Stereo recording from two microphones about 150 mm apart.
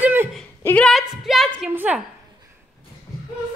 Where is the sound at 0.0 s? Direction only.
15° right (ahead or behind).